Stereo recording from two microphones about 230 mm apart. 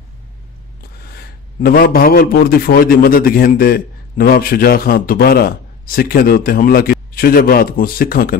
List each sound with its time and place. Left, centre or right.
1.0 s a man's voice: left